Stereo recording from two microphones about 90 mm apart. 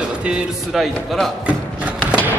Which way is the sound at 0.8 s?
Centre (ahead or behind).